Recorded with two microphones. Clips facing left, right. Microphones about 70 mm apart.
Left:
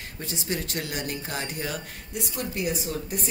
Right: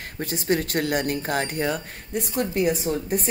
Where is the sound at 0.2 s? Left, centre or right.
Right.